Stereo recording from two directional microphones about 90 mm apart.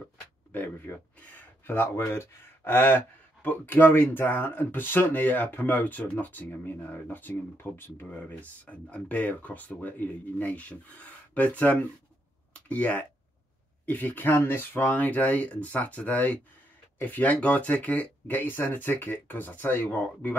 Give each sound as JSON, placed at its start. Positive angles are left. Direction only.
{"t": 0.5, "sound": "speech", "side_deg": 20}